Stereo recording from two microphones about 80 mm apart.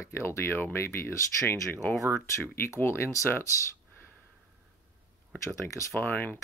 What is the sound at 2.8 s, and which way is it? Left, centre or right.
Speech, left.